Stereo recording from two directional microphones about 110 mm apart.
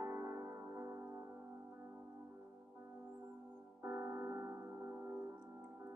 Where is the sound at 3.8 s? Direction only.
20° right (ahead or behind).